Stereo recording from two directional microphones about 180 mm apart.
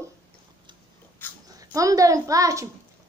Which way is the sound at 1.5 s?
20° right (ahead or behind).